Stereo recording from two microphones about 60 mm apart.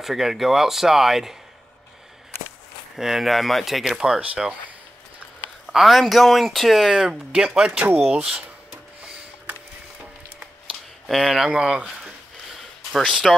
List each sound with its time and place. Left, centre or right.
0.0 s speech: centre
3.0 s speech: centre
5.7 s speech: centre
11.1 s speech: centre
12.9 s speech: centre